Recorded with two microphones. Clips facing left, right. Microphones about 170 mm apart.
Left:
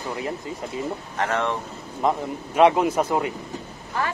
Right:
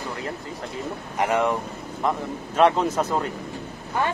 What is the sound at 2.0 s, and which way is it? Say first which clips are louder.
A man's voice: left 2 dB; 20° left (ahead or behind).